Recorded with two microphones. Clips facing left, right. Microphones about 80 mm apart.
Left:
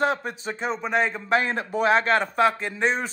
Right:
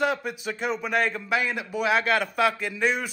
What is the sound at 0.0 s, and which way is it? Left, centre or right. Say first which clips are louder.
A man's voice: left 1 dB; left.